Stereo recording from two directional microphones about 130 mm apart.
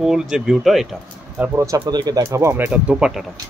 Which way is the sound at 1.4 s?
15° right (ahead or behind).